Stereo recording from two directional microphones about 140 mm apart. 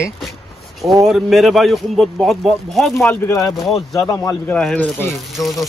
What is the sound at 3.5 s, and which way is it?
Speech, centre (ahead or behind).